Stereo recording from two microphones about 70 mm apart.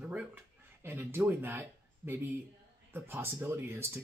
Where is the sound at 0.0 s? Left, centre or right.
Centre.